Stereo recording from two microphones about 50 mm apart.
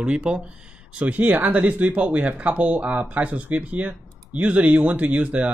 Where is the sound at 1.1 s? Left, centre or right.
Right.